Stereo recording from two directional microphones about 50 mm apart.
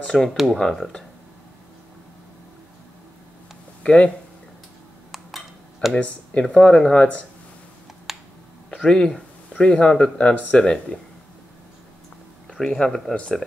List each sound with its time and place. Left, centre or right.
0.0 s speech: centre
3.8 s speech: centre
5.1 s dishes: centre
6.4 s speech: centre
7.0 s speech: left
8.1 s a sound: centre
8.7 s speech: centre
12.5 s speech: centre